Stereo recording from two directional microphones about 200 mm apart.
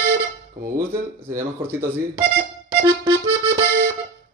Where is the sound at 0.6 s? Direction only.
15° right (ahead or behind).